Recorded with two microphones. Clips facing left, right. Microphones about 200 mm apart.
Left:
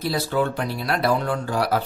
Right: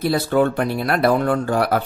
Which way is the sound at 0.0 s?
55° right (ahead or behind).